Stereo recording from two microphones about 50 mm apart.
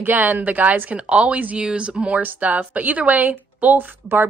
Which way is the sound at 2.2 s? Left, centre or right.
Right.